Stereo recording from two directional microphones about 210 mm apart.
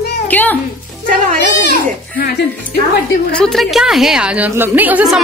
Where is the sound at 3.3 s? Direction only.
5° left (ahead or behind).